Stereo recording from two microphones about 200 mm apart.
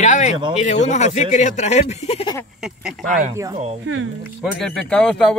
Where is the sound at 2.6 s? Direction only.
5° right (ahead or behind).